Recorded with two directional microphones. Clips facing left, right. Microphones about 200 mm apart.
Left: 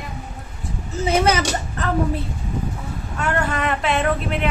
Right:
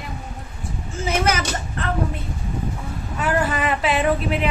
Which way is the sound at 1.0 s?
30° left (ahead or behind).